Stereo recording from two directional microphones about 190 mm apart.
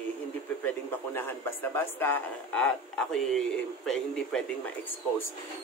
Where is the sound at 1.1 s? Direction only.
10° left (ahead or behind).